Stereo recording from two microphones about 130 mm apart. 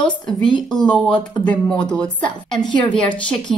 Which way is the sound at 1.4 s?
10° left (ahead or behind).